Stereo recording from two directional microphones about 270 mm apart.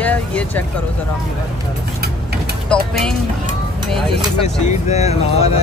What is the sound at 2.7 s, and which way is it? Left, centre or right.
Speech, centre.